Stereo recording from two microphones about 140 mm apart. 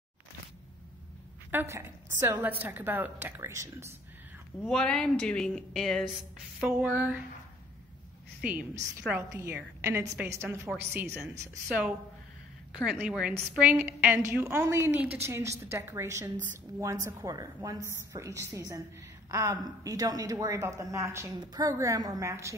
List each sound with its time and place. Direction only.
1.5 s a woman's voice: 15° right (ahead or behind)
4.6 s a woman's voice: 5° left (ahead or behind)
6.6 s a woman's voice: 10° right (ahead or behind)
8.4 s a woman's voice: 10° right (ahead or behind)
10.7 s a woman's voice: 10° right (ahead or behind)
12.7 s a woman's voice: 5° right (ahead or behind)